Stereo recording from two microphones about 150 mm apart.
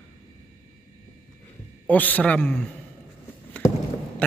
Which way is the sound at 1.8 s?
10° left (ahead or behind).